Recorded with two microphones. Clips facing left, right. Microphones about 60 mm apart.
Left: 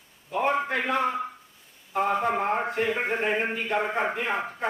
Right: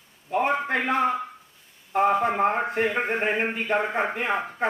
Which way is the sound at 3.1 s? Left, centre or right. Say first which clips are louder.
Right 1 dB; right.